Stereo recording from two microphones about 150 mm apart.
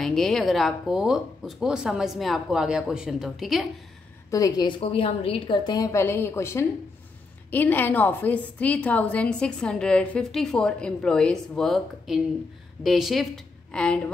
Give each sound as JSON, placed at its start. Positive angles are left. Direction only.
{"t": 0.0, "sound": "speech", "side_deg": 0}
{"t": 4.3, "sound": "a woman's voice", "side_deg": 25}